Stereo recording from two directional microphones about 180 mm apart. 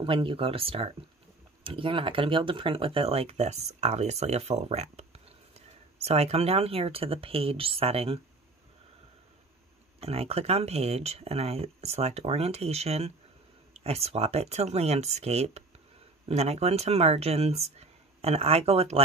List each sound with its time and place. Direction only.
0.0 s speech: 30° right (ahead or behind)
9.9 s speech: 35° right (ahead or behind)